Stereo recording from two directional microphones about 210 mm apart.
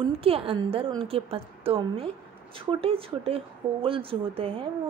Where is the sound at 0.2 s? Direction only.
25° right (ahead or behind).